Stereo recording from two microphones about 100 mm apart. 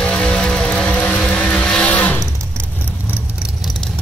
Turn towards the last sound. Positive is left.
turn(degrees=-5)  # may be behind; listen again after turning